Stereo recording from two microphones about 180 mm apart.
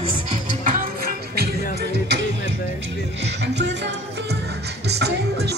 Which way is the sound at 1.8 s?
75° right (ahead or behind).